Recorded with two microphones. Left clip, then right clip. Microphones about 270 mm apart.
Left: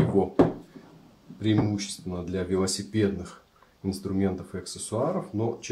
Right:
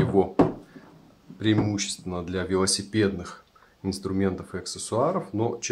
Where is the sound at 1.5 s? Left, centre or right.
Centre.